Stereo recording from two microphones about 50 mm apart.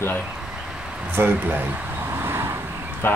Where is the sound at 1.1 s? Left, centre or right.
Right.